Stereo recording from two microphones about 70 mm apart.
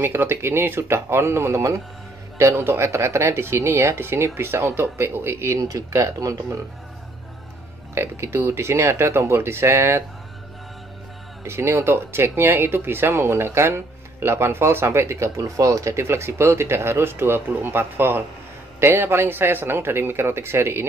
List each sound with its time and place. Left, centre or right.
0.0 s speech: right
7.9 s speech: right
11.4 s speech: right